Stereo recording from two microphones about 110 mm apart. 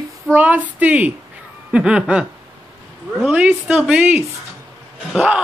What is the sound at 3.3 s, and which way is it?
Speech, 10° right (ahead or behind).